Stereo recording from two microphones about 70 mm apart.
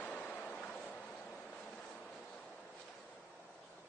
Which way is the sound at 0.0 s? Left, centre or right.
Centre.